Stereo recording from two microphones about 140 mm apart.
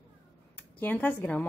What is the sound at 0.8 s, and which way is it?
Speech, 15° left (ahead or behind).